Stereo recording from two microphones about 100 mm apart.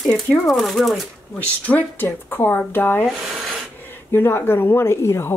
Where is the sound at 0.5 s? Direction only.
Centre (ahead or behind).